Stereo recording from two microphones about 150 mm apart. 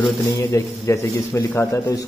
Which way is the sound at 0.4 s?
20° left (ahead or behind).